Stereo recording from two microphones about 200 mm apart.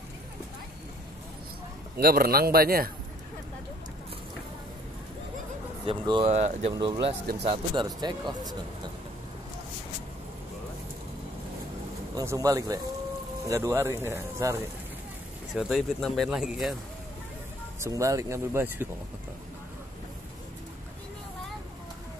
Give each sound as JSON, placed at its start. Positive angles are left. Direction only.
{"t": 2.0, "sound": "speech", "side_deg": -50}
{"t": 5.9, "sound": "speech", "side_deg": -25}
{"t": 6.2, "sound": "speech", "side_deg": -35}
{"t": 6.7, "sound": "speech", "side_deg": -25}
{"t": 12.2, "sound": "speech", "side_deg": -15}
{"t": 15.5, "sound": "speech", "side_deg": 0}
{"t": 17.7, "sound": "speech", "side_deg": -15}